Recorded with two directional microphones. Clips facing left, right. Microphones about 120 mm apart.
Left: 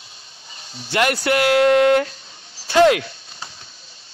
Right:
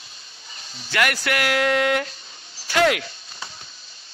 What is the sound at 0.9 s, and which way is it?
Speech, 25° left (ahead or behind).